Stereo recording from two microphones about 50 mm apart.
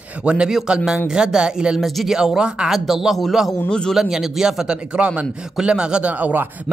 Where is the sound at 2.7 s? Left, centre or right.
Centre.